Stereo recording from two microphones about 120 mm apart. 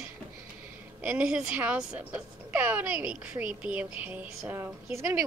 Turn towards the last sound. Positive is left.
turn(degrees=-25)  # may be behind; listen again after turning